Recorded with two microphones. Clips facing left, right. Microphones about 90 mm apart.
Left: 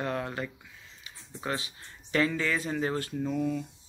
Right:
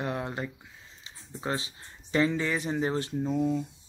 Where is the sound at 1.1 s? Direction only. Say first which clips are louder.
Even; 25° right (ahead or behind).